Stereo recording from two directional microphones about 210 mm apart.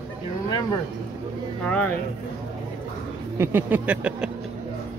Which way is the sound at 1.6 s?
5° left (ahead or behind).